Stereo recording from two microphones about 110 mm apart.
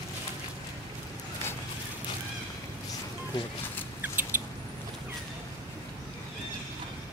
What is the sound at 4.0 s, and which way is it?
Rodents, 20° right (ahead or behind).